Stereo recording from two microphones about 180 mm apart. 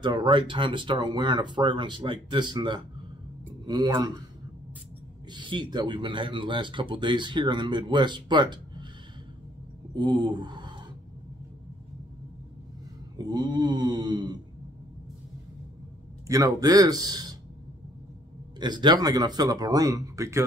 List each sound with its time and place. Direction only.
0.0 s speech: 25° right (ahead or behind)
5.3 s speech: 25° right (ahead or behind)
9.9 s speech: 25° right (ahead or behind)
13.2 s speech: 20° right (ahead or behind)
16.3 s speech: 20° right (ahead or behind)
18.6 s speech: 25° right (ahead or behind)